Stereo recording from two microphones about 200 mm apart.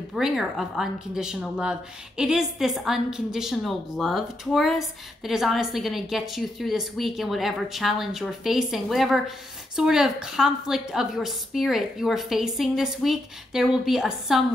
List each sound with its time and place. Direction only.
0.1 s speech: centre (ahead or behind)